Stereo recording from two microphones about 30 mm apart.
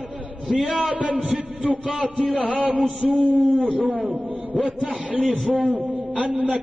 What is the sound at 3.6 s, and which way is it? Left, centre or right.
A man's voice, right.